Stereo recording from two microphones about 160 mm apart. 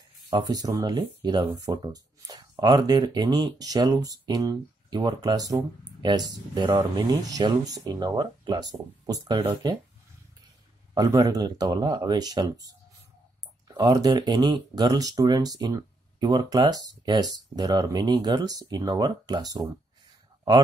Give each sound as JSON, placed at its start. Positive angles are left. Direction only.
{"t": 0.3, "sound": "speech", "side_deg": -25}
{"t": 11.0, "sound": "speech", "side_deg": -25}
{"t": 13.7, "sound": "speech", "side_deg": -25}